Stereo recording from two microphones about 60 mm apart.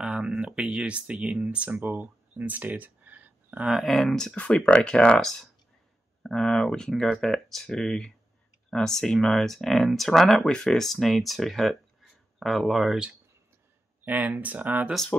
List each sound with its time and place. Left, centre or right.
0.0 s speech: centre
1.8 s a sound: right
3.6 s speech: centre
4.4 s speech: left
6.2 s speech: centre
8.6 s a sound: centre
9.0 s speech: centre
14.0 s speech: right